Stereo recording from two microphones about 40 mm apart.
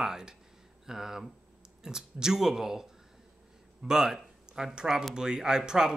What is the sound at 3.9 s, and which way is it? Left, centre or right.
Speech, centre.